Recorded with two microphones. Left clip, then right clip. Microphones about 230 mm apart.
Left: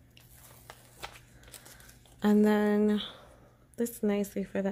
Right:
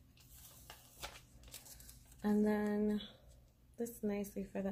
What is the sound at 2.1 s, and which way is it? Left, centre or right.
Speech, left.